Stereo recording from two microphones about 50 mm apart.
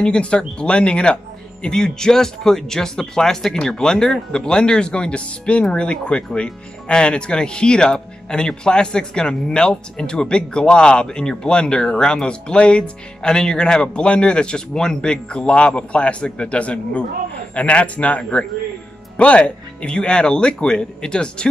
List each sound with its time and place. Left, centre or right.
0.0 s speech: left